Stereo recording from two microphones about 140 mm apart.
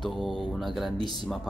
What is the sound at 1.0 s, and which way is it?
Speech, 40° right (ahead or behind).